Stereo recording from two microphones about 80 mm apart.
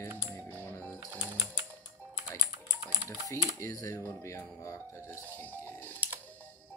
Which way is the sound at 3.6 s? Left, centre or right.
Left.